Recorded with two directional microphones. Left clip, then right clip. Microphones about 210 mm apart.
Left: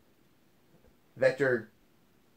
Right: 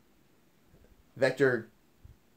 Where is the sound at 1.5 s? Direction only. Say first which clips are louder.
Even; 40° right (ahead or behind).